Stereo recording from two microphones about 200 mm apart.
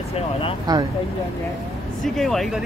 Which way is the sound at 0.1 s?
30° left (ahead or behind).